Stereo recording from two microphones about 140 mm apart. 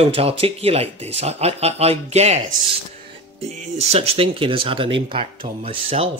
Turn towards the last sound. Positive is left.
turn(degrees=-45)  # may be behind; listen again after turning